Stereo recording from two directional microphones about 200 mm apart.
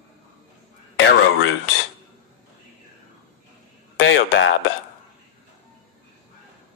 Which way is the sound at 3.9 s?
65° left (ahead or behind).